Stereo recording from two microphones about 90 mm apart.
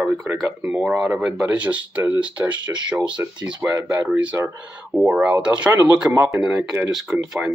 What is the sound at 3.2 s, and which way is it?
Speech, 30° right (ahead or behind).